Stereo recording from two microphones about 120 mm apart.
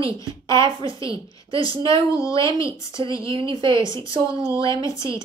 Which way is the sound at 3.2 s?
45° right (ahead or behind).